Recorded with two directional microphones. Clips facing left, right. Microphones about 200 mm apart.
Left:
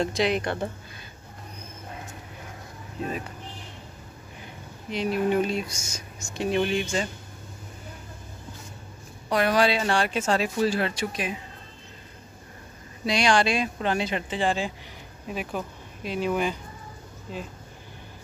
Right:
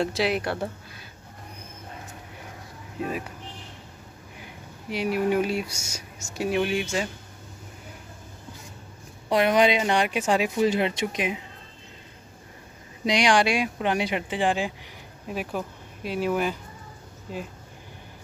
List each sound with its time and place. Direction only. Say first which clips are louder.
0.0 s speech: even; 5° right (ahead or behind)
4.4 s speech: even; 10° right (ahead or behind)
9.3 s speech: right 2 dB; 20° right (ahead or behind)
13.0 s speech: right 1 dB; 15° right (ahead or behind)